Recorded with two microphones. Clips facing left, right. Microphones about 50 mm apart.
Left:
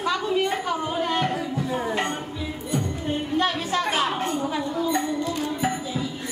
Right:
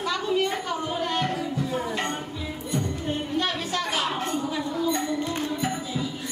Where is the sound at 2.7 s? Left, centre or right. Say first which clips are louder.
Left 1 dB; centre.